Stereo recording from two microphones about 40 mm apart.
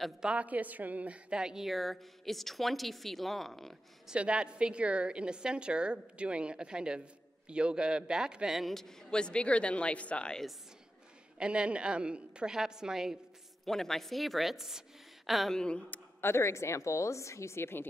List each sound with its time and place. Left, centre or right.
0.4 s a woman's voice: right
1.3 s a woman's voice: centre
1.6 s a woman's voice: centre
4.1 s a woman's voice: right
8.6 s a man's voice: centre
9.1 s speech: left
11.3 s a woman's voice: right
13.7 s a woman's voice: centre
16.2 s speech: left
17.6 s speech: left